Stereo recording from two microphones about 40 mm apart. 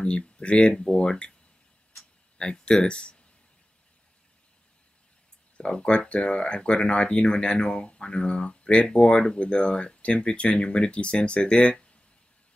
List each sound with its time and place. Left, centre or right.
0.0 s speech: left
2.3 s speech: left
5.6 s speech: left